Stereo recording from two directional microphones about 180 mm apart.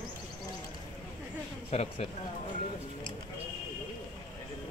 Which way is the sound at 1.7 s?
35° left (ahead or behind).